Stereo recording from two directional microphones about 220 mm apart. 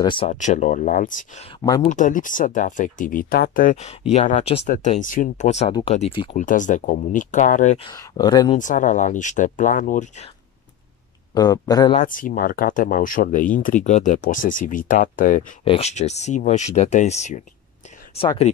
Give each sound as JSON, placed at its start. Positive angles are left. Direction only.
{"t": 0.0, "sound": "speech", "side_deg": 20}
{"t": 0.3, "sound": "speech", "side_deg": 35}
{"t": 1.6, "sound": "speech", "side_deg": 15}
{"t": 1.9, "sound": "speech", "side_deg": 35}
{"t": 6.3, "sound": "speech", "side_deg": 35}
{"t": 7.9, "sound": "speech", "side_deg": 15}
{"t": 8.5, "sound": "speech", "side_deg": 35}
{"t": 11.3, "sound": "speech", "side_deg": 15}
{"t": 12.0, "sound": "speech", "side_deg": 35}